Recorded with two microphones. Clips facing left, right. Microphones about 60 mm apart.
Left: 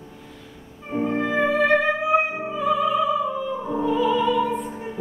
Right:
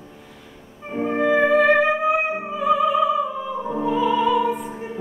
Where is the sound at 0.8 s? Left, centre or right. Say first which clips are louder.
Right 1 dB; centre.